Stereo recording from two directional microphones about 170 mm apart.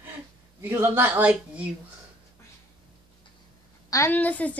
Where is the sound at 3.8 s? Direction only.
15° left (ahead or behind).